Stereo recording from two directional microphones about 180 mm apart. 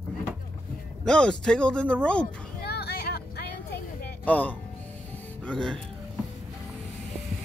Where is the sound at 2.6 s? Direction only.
65° left (ahead or behind).